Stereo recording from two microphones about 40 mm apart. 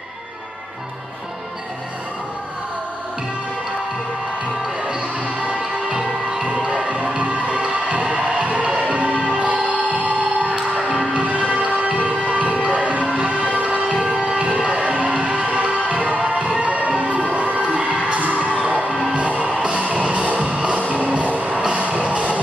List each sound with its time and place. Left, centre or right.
5.9 s music: centre
13.0 s music: right
13.3 s music: right